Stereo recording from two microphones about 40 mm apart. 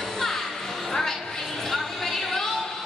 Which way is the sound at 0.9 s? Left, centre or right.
Centre.